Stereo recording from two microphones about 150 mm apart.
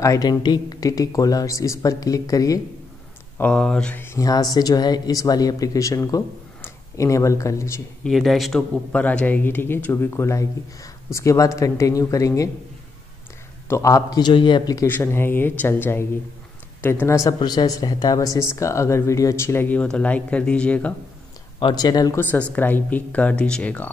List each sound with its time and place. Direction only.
0.0 s speech: 25° left (ahead or behind)
3.3 s speech: 10° left (ahead or behind)
8.0 s speech: centre (ahead or behind); by 12.4 s 20° left (ahead or behind)
13.7 s speech: 20° left (ahead or behind)
14.9 s speech: 15° left (ahead or behind)
21.5 s speech: 30° left (ahead or behind)
22.6 s speech: 10° left (ahead or behind)